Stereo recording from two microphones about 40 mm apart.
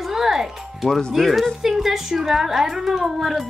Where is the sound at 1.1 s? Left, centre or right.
Centre.